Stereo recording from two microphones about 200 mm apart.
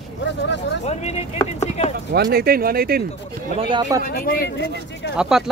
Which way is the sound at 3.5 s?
25° right (ahead or behind).